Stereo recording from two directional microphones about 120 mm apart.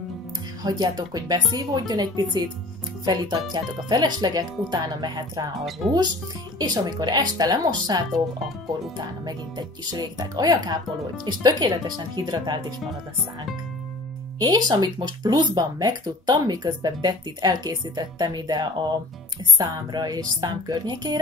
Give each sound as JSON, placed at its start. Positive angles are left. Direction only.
{"t": 0.7, "sound": "speech", "side_deg": -35}
{"t": 5.8, "sound": "speech", "side_deg": 0}
{"t": 6.6, "sound": "speech", "side_deg": -35}
{"t": 14.4, "sound": "speech", "side_deg": -35}